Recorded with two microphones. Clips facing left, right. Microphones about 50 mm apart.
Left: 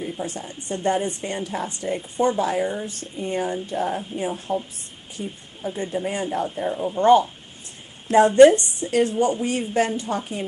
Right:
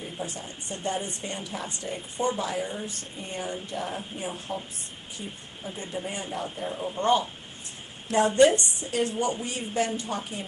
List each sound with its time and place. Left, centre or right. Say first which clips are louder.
0.0 s speech: left 6 dB; left
1.8 s speech: left 8 dB; left
2.3 s speech: left 7 dB; left
3.6 s speech: left 8 dB; left
3.9 s speech: left 7 dB; left
8.3 s speech: left 7 dB; left